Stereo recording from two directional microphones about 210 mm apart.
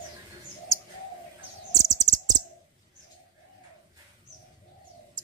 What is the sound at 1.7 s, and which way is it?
Chirp, 15° left (ahead or behind).